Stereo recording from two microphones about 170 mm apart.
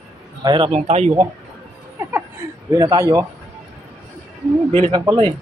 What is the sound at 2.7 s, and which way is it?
Speech, 20° right (ahead or behind).